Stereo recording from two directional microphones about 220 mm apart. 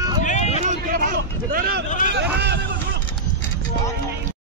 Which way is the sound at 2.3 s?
50° right (ahead or behind).